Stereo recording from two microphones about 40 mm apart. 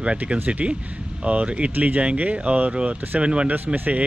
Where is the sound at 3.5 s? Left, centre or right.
Right.